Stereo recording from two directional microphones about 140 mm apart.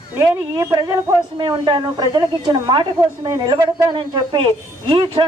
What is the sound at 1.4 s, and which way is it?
Speech, 35° right (ahead or behind).